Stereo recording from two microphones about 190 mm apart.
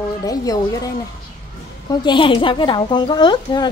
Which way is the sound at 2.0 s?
25° left (ahead or behind).